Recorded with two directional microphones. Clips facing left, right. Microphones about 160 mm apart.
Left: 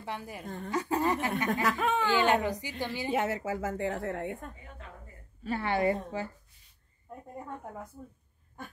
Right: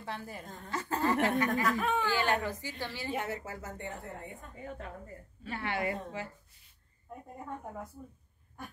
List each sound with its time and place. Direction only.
0.0 s a woman's voice: 15° left (ahead or behind)
1.6 s speech: 90° left
2.0 s a woman's voice: 20° left (ahead or behind)
3.1 s a woman's voice: 90° left; by 4.5 s 70° left (ahead or behind)
5.4 s a woman's voice: 35° left (ahead or behind)